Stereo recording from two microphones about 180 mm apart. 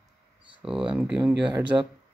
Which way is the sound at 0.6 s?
5° right (ahead or behind).